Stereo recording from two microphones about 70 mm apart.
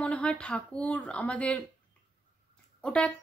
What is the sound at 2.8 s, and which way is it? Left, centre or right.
Speech, centre.